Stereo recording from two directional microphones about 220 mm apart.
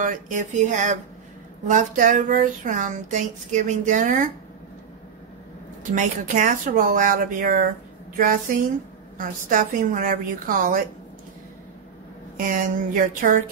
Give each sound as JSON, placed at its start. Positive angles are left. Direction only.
{"t": 0.0, "sound": "speech", "side_deg": -35}
{"t": 5.9, "sound": "speech", "side_deg": -35}
{"t": 12.4, "sound": "speech", "side_deg": -35}